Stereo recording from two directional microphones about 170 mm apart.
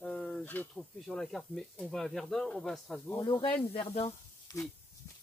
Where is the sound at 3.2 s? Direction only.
25° left (ahead or behind).